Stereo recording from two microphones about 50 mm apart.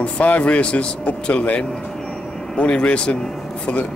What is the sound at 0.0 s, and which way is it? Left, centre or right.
Speech, left.